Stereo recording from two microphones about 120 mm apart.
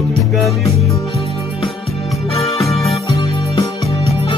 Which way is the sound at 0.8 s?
30° left (ahead or behind).